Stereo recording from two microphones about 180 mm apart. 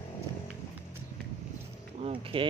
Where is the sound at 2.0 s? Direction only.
30° right (ahead or behind).